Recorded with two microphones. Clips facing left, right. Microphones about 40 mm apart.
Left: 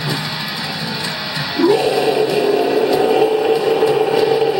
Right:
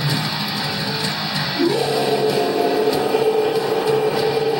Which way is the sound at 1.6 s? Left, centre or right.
Centre.